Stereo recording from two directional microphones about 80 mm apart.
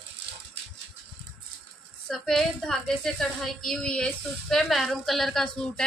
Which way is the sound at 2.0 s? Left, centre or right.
Centre.